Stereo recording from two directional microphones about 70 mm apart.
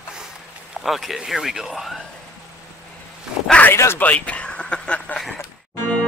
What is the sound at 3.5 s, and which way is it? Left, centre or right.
Zipper, left.